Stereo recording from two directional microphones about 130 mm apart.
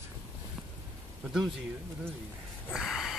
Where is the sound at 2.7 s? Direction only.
Centre (ahead or behind).